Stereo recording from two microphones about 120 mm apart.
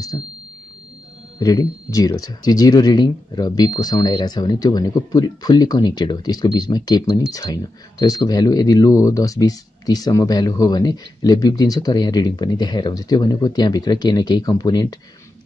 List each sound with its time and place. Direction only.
0.1 s speech: 35° left (ahead or behind)
1.4 s speech: 30° left (ahead or behind)